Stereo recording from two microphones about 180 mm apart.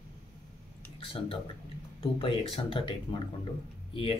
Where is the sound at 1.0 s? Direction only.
30° left (ahead or behind).